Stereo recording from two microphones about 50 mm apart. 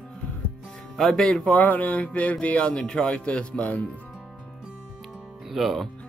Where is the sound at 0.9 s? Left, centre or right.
Centre.